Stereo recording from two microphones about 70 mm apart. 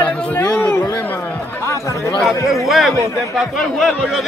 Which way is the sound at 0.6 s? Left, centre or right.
Left.